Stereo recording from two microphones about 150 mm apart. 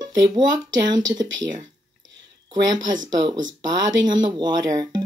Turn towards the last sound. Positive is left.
turn(degrees=-25)  # may be behind; listen again after turning